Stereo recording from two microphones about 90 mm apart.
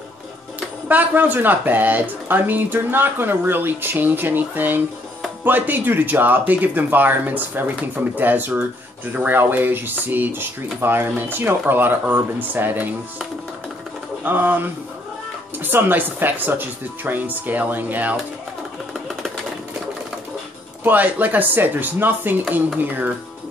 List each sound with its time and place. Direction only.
0.8 s speech: 20° right (ahead or behind)
14.2 s speech: 20° right (ahead or behind)
18.9 s a sound: centre (ahead or behind)
20.8 s speech: 20° right (ahead or behind)